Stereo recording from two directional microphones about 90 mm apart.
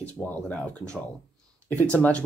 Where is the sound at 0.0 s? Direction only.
10° left (ahead or behind).